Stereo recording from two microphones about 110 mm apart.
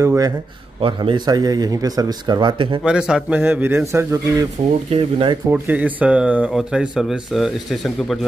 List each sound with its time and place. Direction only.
0.0 s a man's voice: 25° right (ahead or behind)
0.7 s a man's voice: 55° right (ahead or behind)
2.8 s a man's voice: 5° right (ahead or behind); by 4.5 s 25° right (ahead or behind)
4.8 s speech: 65° right (ahead or behind)
5.5 s speech: 15° right (ahead or behind); by 8.3 s centre (ahead or behind)